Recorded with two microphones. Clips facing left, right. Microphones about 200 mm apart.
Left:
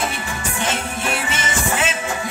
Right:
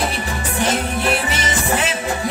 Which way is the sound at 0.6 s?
35° right (ahead or behind).